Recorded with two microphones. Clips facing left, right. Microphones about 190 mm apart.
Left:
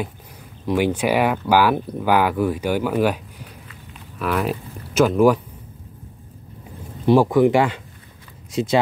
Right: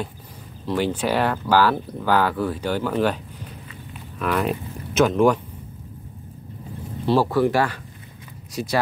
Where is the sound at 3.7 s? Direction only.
5° left (ahead or behind).